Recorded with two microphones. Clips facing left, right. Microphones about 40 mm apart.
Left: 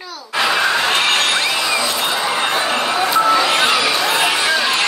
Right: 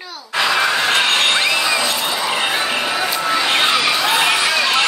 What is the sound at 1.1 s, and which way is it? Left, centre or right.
Music, right.